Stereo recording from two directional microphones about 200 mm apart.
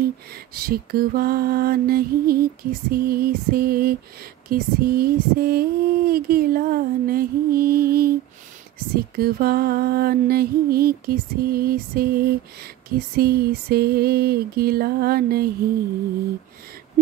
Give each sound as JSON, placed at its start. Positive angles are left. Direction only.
{"t": 0.6, "sound": "music", "side_deg": -45}